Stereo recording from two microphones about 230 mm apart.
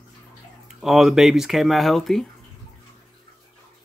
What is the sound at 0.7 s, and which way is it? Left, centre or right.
Speech, centre.